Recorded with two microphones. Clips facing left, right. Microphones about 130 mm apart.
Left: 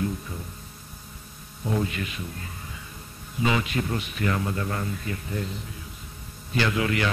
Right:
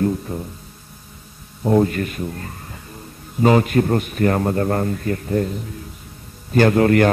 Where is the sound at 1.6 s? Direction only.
45° right (ahead or behind).